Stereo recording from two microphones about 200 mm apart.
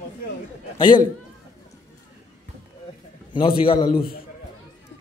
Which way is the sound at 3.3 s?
25° left (ahead or behind).